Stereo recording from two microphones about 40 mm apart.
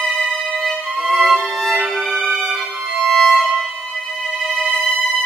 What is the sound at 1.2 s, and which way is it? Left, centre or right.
Music, centre.